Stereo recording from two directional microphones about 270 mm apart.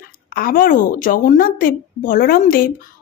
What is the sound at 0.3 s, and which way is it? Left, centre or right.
Speech, left.